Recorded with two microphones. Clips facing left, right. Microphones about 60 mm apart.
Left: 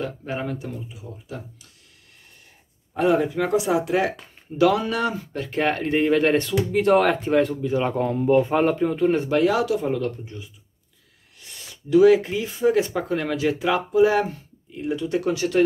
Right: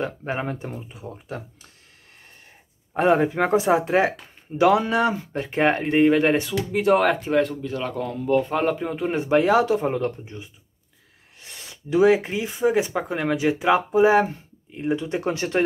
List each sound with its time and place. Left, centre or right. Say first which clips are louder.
0.0 s speech: right 1 dB; right
2.9 s speech: right 1 dB; right
5.9 s speech: right 1 dB; centre
7.6 s speech: left 5 dB; centre
8.5 s speech: left 3 dB; centre; by 15.6 s right